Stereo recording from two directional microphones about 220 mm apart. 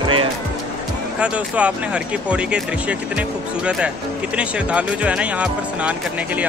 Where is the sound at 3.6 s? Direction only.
5° right (ahead or behind).